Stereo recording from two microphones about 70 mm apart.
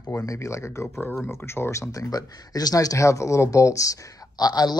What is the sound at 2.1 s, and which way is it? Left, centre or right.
Speech, left.